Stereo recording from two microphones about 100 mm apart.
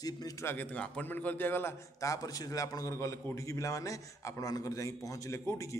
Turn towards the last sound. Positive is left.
turn(degrees=30)  # may be behind; listen again after turning